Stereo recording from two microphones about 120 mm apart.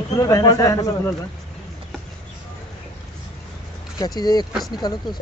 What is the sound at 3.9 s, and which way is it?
Speech, 35° left (ahead or behind).